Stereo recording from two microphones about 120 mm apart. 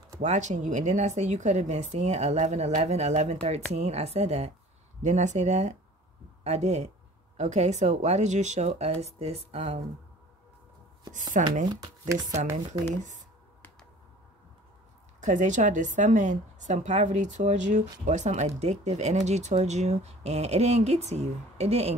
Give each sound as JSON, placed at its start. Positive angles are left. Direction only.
{"t": 0.2, "sound": "a woman's voice", "side_deg": -75}
{"t": 5.0, "sound": "a woman's voice", "side_deg": -80}
{"t": 11.1, "sound": "a woman's voice", "side_deg": -90}
{"t": 11.7, "sound": "speech", "side_deg": -30}
{"t": 15.1, "sound": "a woman's voice", "side_deg": -90}
{"t": 18.6, "sound": "speech", "side_deg": -65}